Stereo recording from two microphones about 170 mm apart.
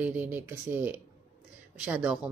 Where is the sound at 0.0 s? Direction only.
10° right (ahead or behind).